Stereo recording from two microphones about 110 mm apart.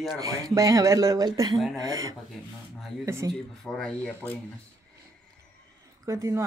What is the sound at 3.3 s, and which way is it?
Speech, 5° left (ahead or behind).